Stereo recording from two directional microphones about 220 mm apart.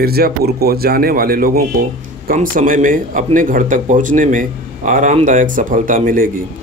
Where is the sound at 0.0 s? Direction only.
45° right (ahead or behind).